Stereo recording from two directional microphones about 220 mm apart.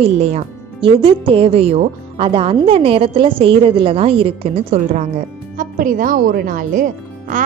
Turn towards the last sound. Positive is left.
turn(degrees=-35)  # may be behind; listen again after turning